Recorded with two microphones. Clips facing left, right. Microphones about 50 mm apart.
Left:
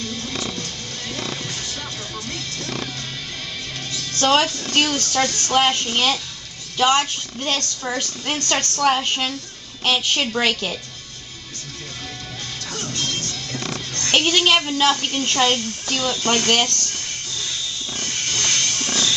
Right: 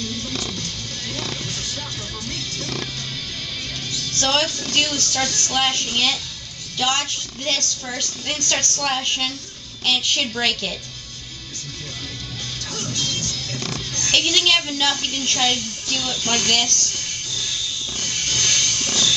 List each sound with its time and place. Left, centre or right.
0.3 s music: left
3.9 s a woman's voice: centre
12.7 s music: left
13.3 s a woman's voice: left
17.4 s hiss: left